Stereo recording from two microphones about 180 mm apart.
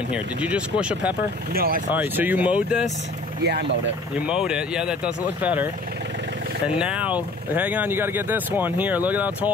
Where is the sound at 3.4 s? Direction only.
65° right (ahead or behind).